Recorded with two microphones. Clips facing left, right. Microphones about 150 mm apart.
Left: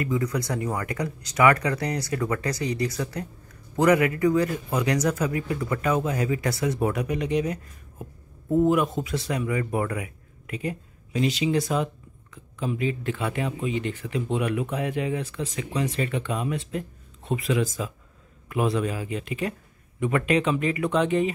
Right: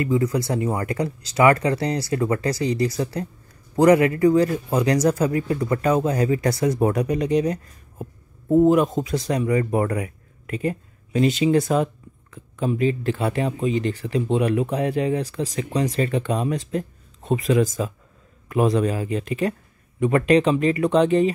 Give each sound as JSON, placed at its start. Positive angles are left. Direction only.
{"t": 0.0, "sound": "speech", "side_deg": -30}